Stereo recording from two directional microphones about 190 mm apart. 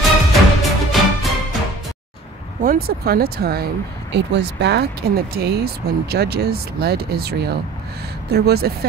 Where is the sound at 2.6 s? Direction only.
50° right (ahead or behind).